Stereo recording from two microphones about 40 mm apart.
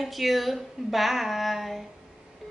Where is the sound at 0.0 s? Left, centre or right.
Centre.